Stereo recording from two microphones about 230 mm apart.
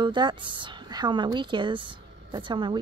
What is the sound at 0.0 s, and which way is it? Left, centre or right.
Speech, centre.